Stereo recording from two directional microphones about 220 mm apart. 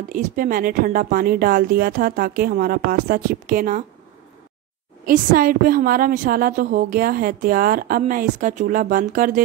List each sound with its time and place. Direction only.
0.1 s a woman's voice: 40° right (ahead or behind)
5.0 s a woman's voice: 40° right (ahead or behind)